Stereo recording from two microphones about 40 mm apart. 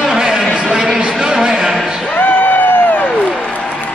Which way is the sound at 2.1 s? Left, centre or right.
Left.